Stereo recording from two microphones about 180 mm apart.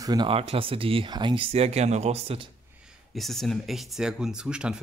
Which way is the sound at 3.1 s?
Centre (ahead or behind).